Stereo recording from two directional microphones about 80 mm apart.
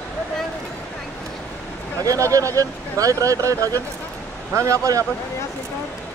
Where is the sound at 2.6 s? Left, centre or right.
Right.